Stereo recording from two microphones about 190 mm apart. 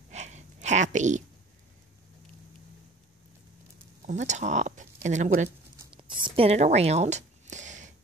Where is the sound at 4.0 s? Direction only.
40° right (ahead or behind).